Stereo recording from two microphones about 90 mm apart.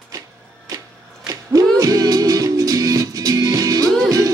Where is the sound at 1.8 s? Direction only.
40° right (ahead or behind).